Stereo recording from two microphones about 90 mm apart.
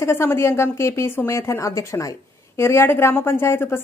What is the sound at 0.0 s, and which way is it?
A woman's voice, 30° left (ahead or behind).